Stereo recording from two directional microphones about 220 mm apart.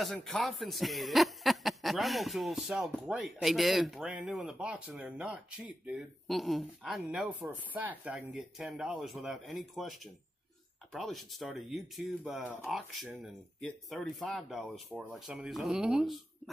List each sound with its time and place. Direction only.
0.0 s speech: centre (ahead or behind)